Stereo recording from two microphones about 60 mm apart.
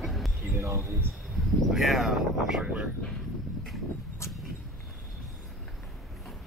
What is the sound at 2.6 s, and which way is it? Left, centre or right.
Speech, centre.